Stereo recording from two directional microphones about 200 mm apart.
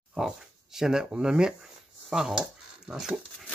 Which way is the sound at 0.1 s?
Centre (ahead or behind).